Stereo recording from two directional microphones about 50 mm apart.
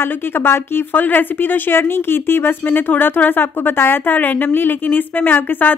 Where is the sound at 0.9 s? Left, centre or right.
Left.